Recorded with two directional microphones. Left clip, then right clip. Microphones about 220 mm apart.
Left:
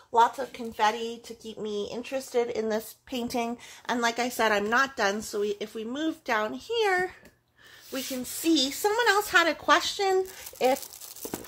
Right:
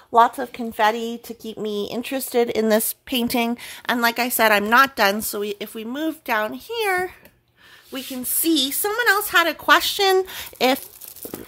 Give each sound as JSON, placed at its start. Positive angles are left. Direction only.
{"t": 0.1, "sound": "speech", "side_deg": -50}